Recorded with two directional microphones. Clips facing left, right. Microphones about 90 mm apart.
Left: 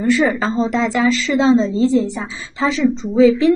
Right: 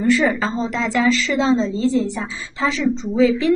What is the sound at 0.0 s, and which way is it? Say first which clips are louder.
A woman's voice: left 1 dB; 15° left (ahead or behind).